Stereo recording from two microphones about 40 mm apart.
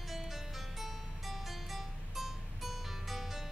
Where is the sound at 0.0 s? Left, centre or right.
Centre.